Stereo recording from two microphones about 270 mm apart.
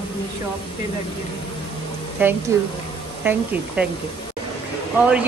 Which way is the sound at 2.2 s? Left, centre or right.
Centre.